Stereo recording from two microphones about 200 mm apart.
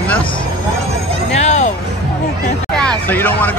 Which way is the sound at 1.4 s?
35° left (ahead or behind).